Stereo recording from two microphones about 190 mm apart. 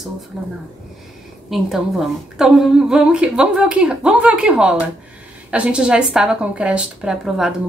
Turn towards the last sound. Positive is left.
turn(degrees=-5)  # may be behind; listen again after turning